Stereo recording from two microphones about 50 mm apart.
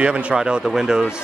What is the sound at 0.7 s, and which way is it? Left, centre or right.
Speech, centre.